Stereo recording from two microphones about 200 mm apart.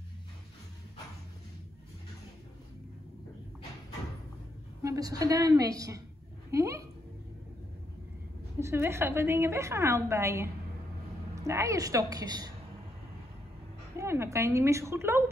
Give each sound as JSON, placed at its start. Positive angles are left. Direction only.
{"t": 4.8, "sound": "a woman's voice", "side_deg": -20}
{"t": 8.5, "sound": "a woman's voice", "side_deg": -15}
{"t": 13.9, "sound": "a woman's voice", "side_deg": -15}